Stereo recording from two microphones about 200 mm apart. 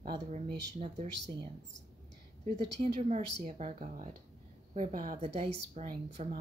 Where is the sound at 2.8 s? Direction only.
30° right (ahead or behind).